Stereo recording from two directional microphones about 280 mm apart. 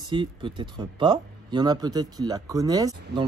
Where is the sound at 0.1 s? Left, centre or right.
Centre.